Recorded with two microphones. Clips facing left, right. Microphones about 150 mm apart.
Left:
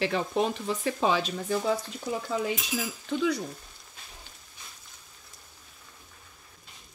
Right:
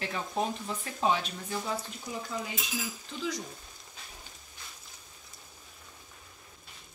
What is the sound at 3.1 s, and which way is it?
Speech, 70° left (ahead or behind).